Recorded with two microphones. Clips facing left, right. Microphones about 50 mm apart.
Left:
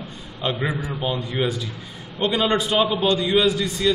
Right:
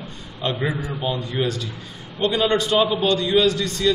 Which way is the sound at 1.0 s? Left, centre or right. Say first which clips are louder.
Even; centre.